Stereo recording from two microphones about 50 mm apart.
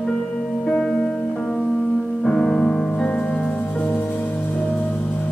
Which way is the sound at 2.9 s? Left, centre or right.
Left.